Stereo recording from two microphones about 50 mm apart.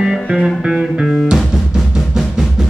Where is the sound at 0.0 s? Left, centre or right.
Centre.